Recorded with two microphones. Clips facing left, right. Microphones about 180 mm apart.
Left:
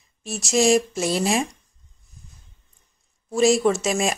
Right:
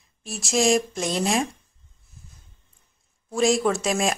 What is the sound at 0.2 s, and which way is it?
A woman's voice, centre (ahead or behind).